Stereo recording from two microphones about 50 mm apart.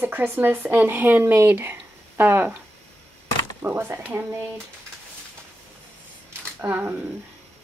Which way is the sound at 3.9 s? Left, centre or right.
Right.